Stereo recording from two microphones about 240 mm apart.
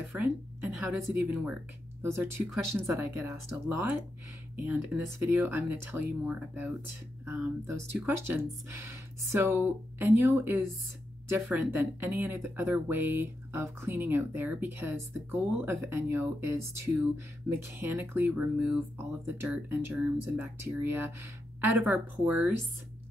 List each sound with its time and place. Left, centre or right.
0.2 s speech: centre
2.9 s speech: centre